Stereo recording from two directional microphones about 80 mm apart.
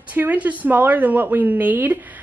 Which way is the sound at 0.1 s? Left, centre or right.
Right.